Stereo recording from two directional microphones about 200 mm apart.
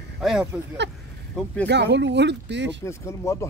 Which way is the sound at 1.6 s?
60° right (ahead or behind).